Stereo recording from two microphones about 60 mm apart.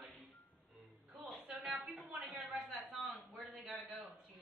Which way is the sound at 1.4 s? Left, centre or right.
Right.